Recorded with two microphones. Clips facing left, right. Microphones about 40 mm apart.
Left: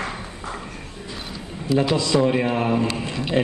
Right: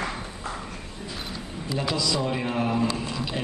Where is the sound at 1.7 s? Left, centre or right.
Left.